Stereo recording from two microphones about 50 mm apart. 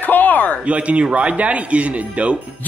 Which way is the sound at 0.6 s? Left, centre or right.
Right.